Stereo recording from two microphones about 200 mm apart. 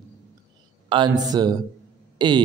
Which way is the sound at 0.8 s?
25° right (ahead or behind).